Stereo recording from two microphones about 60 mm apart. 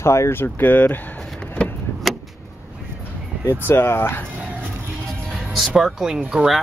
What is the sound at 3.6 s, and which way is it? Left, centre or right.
Speech, left.